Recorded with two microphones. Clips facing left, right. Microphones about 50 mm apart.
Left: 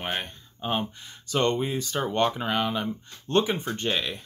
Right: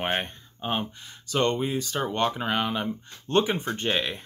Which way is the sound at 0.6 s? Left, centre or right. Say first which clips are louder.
Left 1 dB; centre.